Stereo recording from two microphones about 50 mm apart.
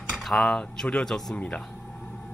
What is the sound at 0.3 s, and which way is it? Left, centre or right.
Speech, centre.